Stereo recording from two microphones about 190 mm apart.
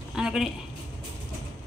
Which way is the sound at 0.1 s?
5° right (ahead or behind).